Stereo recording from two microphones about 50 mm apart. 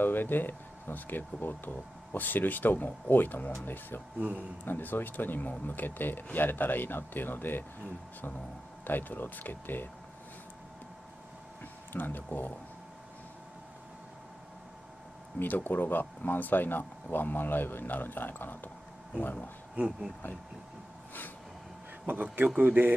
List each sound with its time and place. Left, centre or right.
0.0 s speech: left
8.8 s speech: left
11.9 s speech: left
15.3 s speech: left
19.7 s speech: right
22.6 s a man's voice: right